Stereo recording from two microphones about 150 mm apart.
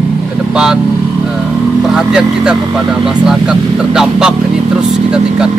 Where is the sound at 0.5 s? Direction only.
5° right (ahead or behind).